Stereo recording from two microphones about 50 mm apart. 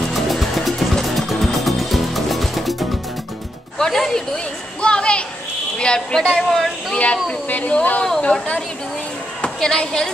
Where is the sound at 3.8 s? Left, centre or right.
Centre.